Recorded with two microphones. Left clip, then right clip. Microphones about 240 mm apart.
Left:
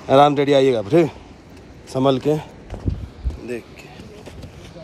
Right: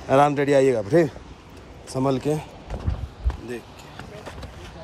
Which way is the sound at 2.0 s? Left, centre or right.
Left.